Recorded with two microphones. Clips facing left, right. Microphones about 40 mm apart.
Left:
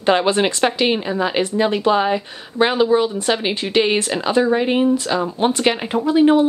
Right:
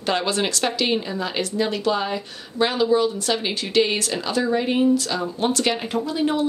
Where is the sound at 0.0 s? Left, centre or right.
Left.